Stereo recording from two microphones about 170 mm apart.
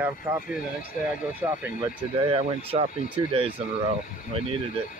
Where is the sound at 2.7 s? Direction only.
35° right (ahead or behind).